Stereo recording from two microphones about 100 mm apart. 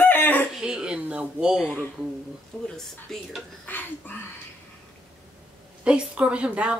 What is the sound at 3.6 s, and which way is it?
Speech, 20° left (ahead or behind).